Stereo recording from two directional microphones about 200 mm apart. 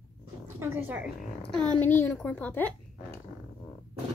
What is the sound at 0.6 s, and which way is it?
Speech, 10° right (ahead or behind).